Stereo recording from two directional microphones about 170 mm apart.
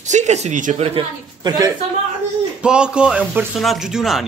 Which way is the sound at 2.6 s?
5° right (ahead or behind).